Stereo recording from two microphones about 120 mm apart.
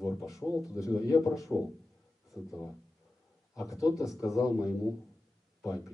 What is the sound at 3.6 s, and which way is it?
A man's voice, 25° left (ahead or behind).